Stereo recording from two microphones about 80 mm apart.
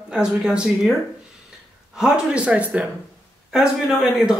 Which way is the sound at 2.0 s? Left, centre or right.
Centre.